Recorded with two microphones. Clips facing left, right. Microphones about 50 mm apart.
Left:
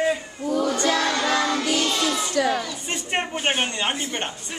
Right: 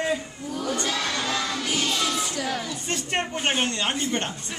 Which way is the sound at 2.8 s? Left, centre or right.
Centre.